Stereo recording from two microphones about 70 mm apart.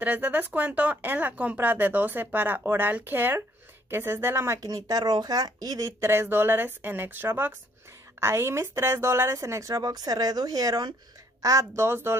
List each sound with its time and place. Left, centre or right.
0.0 s speech: right
4.6 s speech: right
5.9 s speech: right
11.4 s speech: right